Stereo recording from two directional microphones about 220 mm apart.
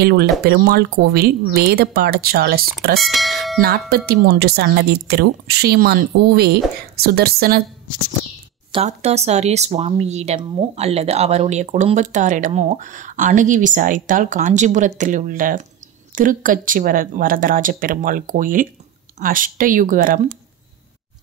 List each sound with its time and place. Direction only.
0.0 s a woman's voice: 45° right (ahead or behind)
3.0 s speech: centre (ahead or behind)
3.9 s a woman's voice: 45° right (ahead or behind)
8.7 s speech: 30° right (ahead or behind)